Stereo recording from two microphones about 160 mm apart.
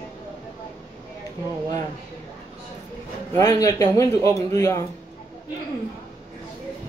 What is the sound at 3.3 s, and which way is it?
A man's voice, 20° left (ahead or behind).